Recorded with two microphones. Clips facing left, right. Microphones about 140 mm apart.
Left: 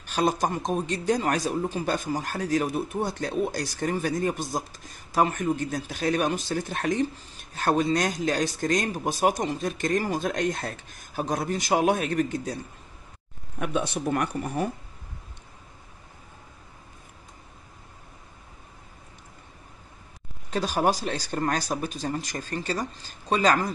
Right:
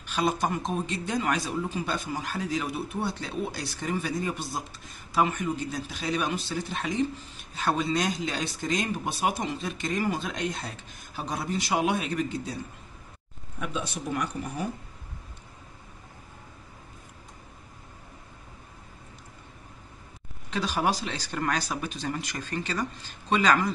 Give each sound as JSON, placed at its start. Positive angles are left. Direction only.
{"t": 0.0, "sound": "speech", "side_deg": 40}
{"t": 13.6, "sound": "speech", "side_deg": 60}
{"t": 20.4, "sound": "speech", "side_deg": 45}